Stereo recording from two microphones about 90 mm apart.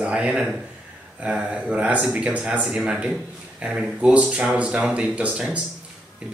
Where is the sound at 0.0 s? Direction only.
15° right (ahead or behind).